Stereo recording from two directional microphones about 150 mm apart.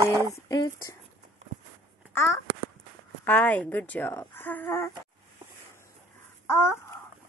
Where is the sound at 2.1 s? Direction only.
15° left (ahead or behind).